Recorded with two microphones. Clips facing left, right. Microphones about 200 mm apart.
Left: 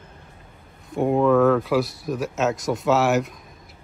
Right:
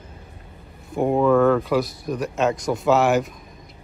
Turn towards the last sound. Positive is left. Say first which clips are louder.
# right 2 dB
turn(degrees=0)  # may be behind; listen again after turning